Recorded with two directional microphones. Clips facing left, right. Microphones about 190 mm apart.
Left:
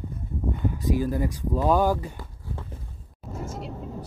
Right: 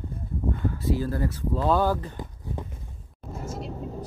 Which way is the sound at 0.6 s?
15° left (ahead or behind).